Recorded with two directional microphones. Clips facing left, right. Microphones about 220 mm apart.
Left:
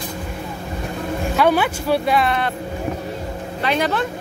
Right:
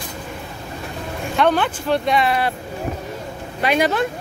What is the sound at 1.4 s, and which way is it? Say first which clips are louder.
Speech: even; 10° left (ahead or behind).